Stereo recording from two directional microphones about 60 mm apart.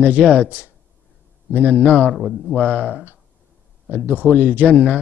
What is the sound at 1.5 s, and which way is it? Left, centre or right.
Speech, left.